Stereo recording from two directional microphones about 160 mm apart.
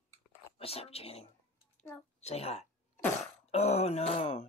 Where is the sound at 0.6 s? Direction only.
40° left (ahead or behind).